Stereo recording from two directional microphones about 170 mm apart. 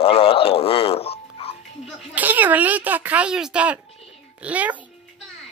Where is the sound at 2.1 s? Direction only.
10° right (ahead or behind).